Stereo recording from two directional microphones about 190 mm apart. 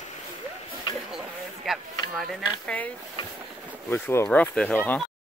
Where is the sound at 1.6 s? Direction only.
Centre (ahead or behind).